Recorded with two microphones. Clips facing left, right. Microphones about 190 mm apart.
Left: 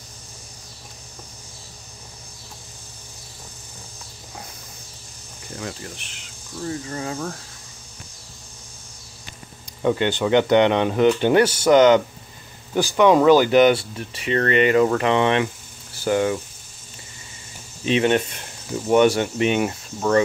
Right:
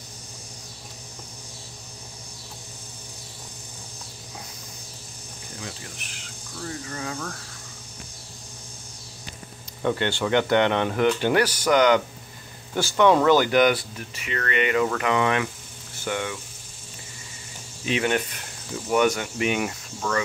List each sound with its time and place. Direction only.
5.9 s speech: 25° left (ahead or behind)
9.8 s speech: 15° left (ahead or behind); by 16.3 s 35° left (ahead or behind)
17.8 s speech: 25° left (ahead or behind)